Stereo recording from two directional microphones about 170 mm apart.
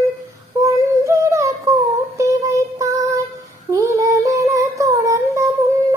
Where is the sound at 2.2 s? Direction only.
20° right (ahead or behind).